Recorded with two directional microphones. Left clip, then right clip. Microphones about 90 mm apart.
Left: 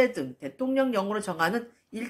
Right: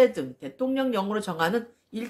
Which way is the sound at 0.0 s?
20° right (ahead or behind).